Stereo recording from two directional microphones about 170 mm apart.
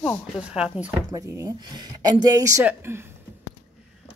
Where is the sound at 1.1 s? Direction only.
20° right (ahead or behind).